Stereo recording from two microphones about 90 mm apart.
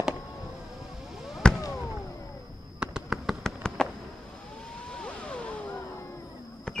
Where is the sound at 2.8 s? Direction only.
5° right (ahead or behind).